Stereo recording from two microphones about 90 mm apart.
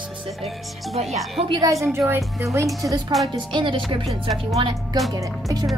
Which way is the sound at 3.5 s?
70° right (ahead or behind).